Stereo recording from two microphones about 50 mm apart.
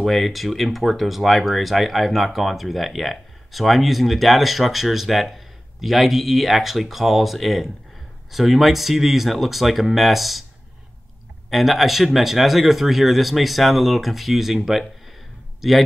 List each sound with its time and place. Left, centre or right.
0.0 s speech: centre
11.5 s speech: centre